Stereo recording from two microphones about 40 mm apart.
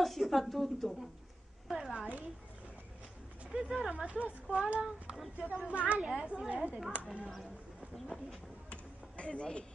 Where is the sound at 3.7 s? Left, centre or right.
Right.